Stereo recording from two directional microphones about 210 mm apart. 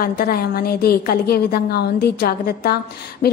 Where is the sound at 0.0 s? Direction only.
45° left (ahead or behind).